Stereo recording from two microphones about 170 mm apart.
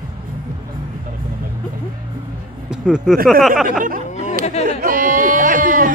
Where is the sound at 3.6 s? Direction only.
50° right (ahead or behind).